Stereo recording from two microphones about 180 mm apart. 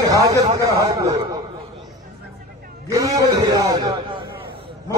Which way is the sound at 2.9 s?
20° right (ahead or behind).